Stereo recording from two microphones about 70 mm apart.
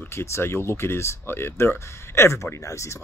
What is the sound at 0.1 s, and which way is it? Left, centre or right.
Speech, left.